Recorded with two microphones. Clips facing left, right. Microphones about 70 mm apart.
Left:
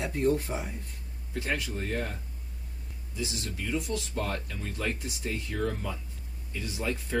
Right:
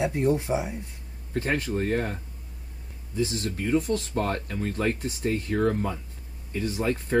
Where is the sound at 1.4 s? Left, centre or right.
Right.